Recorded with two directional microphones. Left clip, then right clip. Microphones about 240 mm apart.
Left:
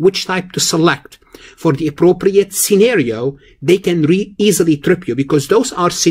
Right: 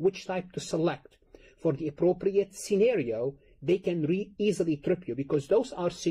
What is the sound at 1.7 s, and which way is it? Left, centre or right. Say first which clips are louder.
Speech: left 15 dB; centre.